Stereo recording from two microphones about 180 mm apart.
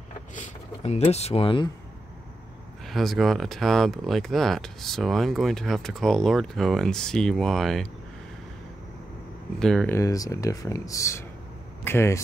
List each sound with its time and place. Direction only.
0.3 s speech: 40° left (ahead or behind)
2.9 s speech: centre (ahead or behind)
9.6 s speech: 5° left (ahead or behind)
9.9 s speech: 20° left (ahead or behind)